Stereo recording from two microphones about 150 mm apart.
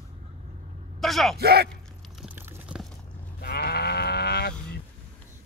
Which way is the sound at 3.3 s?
90° left.